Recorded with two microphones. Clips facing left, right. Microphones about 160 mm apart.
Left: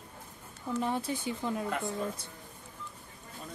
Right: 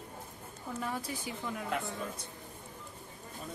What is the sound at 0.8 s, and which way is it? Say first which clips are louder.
Speech: left 5 dB; 25° left (ahead or behind).